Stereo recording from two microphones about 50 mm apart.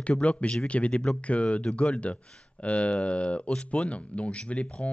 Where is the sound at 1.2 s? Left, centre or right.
Left.